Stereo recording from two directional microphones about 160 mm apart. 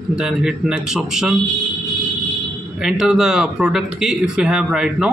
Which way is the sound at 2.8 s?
5° right (ahead or behind).